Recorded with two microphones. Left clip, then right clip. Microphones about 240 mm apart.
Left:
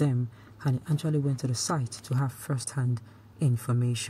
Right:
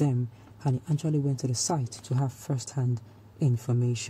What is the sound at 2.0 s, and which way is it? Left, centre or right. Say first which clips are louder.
Speech: right 1 dB; left.